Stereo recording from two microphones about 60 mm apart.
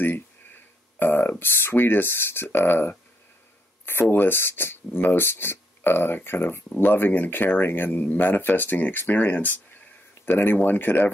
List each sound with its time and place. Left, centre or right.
0.9 s speech: left